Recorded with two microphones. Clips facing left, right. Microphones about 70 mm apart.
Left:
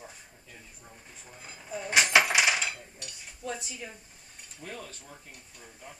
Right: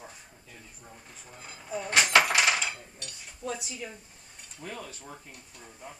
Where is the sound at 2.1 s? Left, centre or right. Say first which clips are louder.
Right 1 dB; centre.